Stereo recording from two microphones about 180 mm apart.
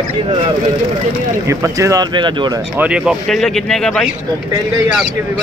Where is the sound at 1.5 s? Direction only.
15° right (ahead or behind).